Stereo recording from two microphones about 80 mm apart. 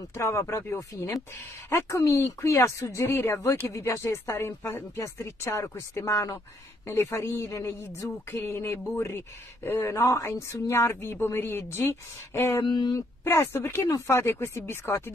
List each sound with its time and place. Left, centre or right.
0.1 s speech: left
12.6 s speech: left
13.2 s speech: left